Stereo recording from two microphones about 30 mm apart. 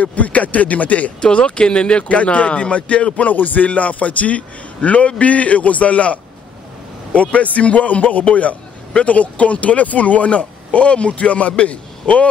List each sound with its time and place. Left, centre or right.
0.0 s a man's voice: left
1.2 s speech: left
2.0 s speech: left
3.3 s speech: left
7.2 s a man's voice: left